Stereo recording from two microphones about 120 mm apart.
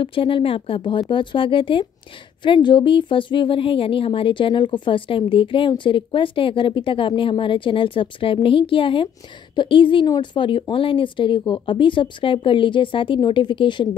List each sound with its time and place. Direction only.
0.0 s speech: 45° left (ahead or behind)